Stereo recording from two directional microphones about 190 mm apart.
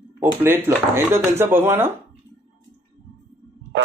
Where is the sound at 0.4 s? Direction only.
10° right (ahead or behind).